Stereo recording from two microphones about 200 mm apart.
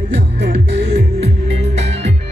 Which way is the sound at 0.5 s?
30° right (ahead or behind).